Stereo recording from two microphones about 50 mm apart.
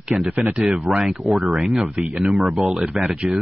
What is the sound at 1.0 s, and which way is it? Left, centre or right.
Speech, centre.